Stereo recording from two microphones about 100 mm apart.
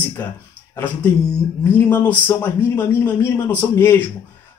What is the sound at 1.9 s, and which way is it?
Speech, 20° left (ahead or behind).